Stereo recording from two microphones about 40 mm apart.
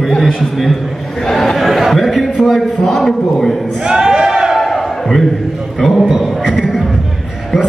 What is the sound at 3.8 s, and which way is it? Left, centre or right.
Crowd, centre.